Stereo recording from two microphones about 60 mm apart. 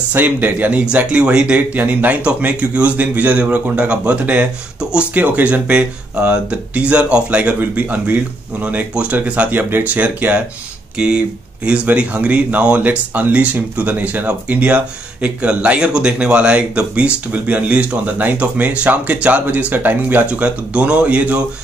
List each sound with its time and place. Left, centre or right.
0.1 s speech: right